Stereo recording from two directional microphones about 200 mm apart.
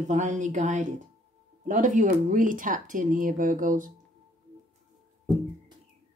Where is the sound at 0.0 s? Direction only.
35° right (ahead or behind).